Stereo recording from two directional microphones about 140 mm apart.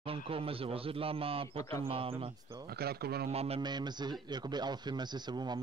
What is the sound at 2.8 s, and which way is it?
Speech, 90° right.